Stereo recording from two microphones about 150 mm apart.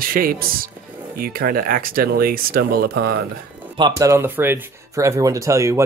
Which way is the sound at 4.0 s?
15° right (ahead or behind).